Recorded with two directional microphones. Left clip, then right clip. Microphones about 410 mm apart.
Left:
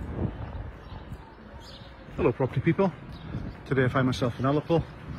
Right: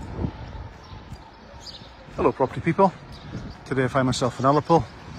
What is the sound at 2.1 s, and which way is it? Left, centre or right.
Speech, centre.